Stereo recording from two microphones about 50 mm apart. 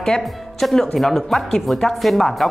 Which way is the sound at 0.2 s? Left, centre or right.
Centre.